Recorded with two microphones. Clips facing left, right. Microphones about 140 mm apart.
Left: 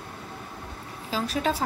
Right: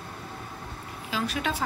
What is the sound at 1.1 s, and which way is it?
Speech, 35° left (ahead or behind).